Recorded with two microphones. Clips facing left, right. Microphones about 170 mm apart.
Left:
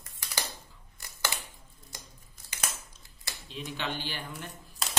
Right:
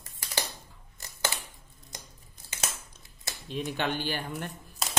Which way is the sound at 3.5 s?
55° right (ahead or behind).